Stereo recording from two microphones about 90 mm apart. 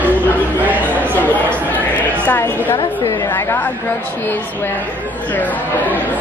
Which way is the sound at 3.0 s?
40° left (ahead or behind).